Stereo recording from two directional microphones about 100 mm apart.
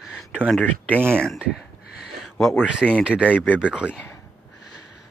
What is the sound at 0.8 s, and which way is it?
Speech, 20° right (ahead or behind).